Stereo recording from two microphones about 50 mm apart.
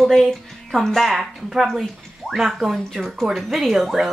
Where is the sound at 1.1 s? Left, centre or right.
Centre.